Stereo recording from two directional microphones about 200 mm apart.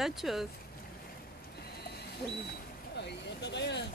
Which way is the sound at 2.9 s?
60° left (ahead or behind).